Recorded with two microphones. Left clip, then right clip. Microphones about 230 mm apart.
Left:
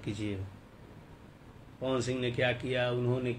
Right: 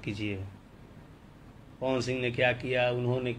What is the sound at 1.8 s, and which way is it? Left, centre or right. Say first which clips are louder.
Speech: right 2 dB; centre.